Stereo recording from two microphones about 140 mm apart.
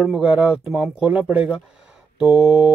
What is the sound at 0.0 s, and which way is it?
Speech, 5° right (ahead or behind).